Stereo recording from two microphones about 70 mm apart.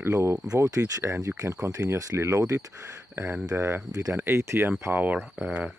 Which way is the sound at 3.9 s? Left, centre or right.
Right.